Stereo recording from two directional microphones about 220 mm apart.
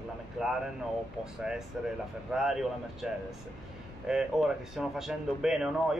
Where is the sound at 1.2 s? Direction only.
5° right (ahead or behind).